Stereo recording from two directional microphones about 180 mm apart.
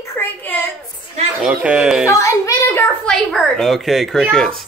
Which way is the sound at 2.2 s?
15° left (ahead or behind).